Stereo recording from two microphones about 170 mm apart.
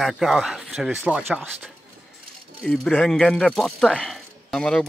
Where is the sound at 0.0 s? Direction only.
Centre (ahead or behind).